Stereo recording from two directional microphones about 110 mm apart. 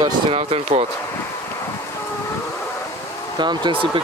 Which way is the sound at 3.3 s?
45° right (ahead or behind).